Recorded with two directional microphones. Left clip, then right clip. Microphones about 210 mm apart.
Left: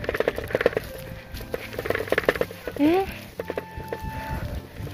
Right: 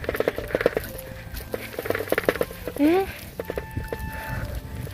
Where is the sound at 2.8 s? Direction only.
25° right (ahead or behind).